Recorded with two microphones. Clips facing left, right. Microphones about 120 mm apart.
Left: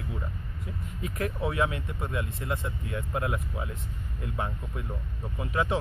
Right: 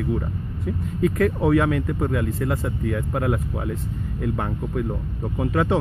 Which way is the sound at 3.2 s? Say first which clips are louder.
Right 8 dB; 50° right (ahead or behind).